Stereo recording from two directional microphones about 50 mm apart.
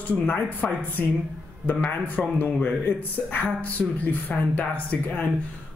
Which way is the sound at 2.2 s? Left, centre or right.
Centre.